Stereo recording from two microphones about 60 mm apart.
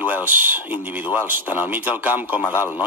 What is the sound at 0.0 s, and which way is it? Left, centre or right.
A man's voice, right.